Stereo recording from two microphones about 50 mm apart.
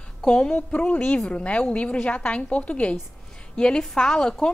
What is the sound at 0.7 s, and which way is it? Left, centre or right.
A woman's voice, left.